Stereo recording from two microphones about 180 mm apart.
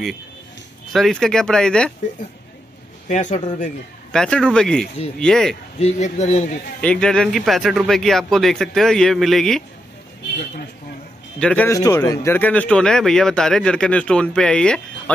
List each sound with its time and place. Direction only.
0.9 s speech: centre (ahead or behind)
3.1 s a man's voice: 40° left (ahead or behind)
4.1 s speech: 5° left (ahead or behind)
5.8 s a man's voice: 40° left (ahead or behind)
6.8 s speech: 5° left (ahead or behind)
11.3 s speech: 5° left (ahead or behind)